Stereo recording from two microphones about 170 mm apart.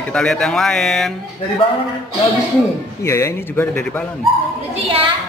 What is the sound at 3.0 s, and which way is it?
A man's voice, 15° left (ahead or behind).